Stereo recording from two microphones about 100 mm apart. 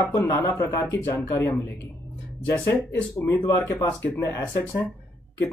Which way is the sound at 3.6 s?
30° left (ahead or behind).